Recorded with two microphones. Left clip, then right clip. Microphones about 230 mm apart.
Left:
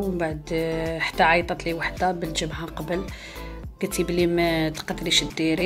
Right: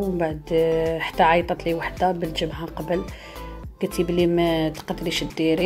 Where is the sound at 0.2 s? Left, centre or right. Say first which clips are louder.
Right 8 dB; centre.